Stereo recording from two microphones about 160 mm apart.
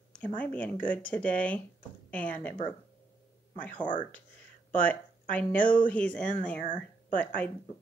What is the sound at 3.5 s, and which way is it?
A woman's voice, 10° left (ahead or behind).